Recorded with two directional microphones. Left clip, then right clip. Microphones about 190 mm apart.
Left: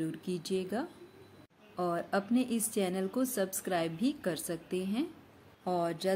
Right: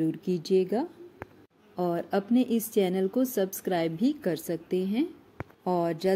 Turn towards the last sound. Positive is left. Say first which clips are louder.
# right 5 dB
turn(degrees=-30)  # may be behind; listen again after turning